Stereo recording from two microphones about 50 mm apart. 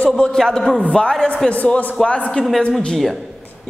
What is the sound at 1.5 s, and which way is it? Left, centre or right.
Speech, left.